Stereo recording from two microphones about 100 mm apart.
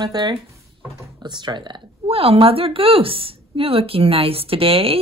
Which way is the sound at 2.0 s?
75° right (ahead or behind).